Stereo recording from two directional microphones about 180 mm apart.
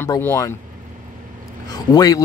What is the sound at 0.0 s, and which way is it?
Speech, 10° left (ahead or behind).